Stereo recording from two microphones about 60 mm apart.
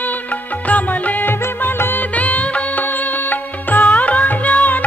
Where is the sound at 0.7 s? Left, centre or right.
Left.